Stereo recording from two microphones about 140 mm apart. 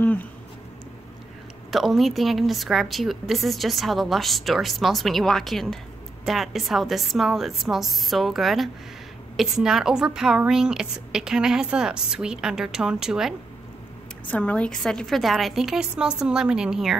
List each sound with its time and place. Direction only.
0.0 s a sound: 10° left (ahead or behind)
1.7 s a woman's voice: centre (ahead or behind)
14.2 s a woman's voice: 10° left (ahead or behind)